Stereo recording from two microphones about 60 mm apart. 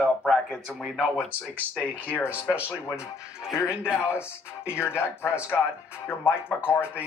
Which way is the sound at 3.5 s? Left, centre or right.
Left.